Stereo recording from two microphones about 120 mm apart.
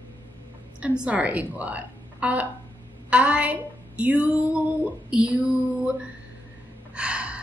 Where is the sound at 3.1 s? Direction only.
10° right (ahead or behind).